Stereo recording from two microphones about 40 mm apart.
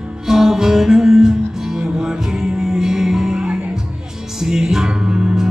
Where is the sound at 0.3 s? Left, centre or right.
Centre.